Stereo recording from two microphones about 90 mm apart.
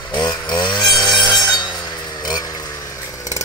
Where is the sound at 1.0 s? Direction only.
5° left (ahead or behind).